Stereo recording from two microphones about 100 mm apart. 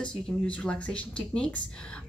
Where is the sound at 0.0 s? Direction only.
10° left (ahead or behind).